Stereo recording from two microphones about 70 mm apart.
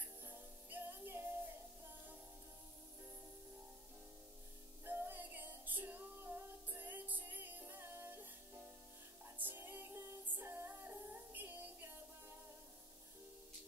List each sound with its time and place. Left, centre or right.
0.0 s music: right
4.8 s music: right